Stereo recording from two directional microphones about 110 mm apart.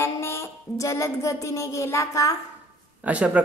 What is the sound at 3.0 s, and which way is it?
Speech, 10° right (ahead or behind).